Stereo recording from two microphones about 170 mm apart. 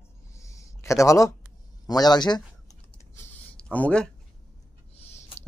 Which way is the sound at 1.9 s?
25° left (ahead or behind).